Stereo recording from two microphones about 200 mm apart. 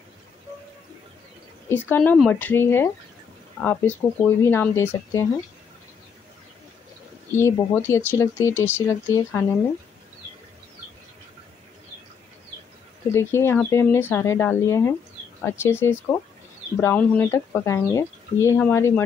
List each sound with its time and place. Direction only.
1.7 s speech: 10° left (ahead or behind)
4.4 s speech: 10° left (ahead or behind)
7.3 s speech: 15° left (ahead or behind)
13.1 s speech: 15° left (ahead or behind)